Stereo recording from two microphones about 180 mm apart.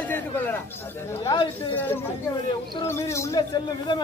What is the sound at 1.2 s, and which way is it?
Speech, 25° left (ahead or behind).